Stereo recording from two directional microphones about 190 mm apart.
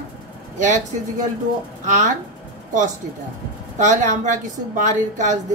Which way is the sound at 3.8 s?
40° right (ahead or behind).